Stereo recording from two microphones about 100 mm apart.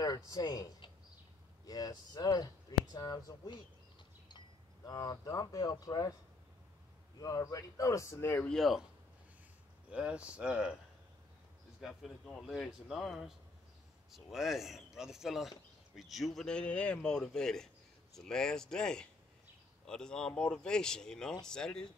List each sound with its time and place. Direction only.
0.0 s speech: 40° left (ahead or behind)
4.8 s speech: 35° left (ahead or behind)
7.2 s speech: 35° left (ahead or behind)
8.5 s speech: centre (ahead or behind)
9.8 s speech: 10° right (ahead or behind)
11.8 s speech: centre (ahead or behind)